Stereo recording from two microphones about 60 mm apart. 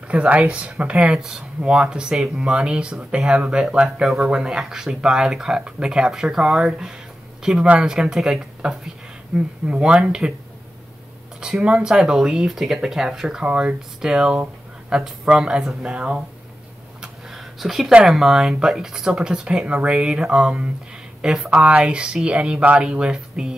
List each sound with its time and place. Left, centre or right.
0.1 s speech: right
11.4 s speech: centre
17.0 s a sound: centre
18.0 s speech: centre